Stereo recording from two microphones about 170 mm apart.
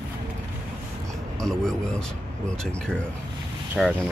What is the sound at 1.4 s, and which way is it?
Speech, 5° left (ahead or behind).